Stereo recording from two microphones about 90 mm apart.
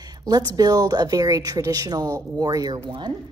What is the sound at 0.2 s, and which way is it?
A woman's voice, 50° right (ahead or behind).